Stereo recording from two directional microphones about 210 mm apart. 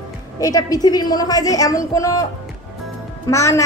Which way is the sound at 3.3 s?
15° left (ahead or behind).